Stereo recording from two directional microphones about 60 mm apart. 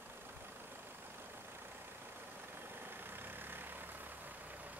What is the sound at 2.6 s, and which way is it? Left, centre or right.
Vehicle, right.